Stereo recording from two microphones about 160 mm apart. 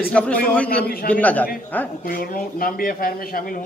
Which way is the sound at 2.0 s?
65° left (ahead or behind).